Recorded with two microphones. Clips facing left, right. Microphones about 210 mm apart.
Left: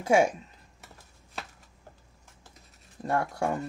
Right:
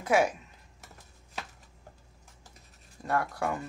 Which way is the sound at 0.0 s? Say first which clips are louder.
Left 3 dB; 25° left (ahead or behind).